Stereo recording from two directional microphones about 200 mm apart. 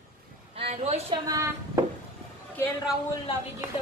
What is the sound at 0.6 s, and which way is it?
Speech, 30° right (ahead or behind).